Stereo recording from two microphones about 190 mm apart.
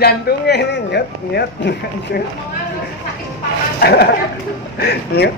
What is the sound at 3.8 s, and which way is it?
Speech, 55° left (ahead or behind).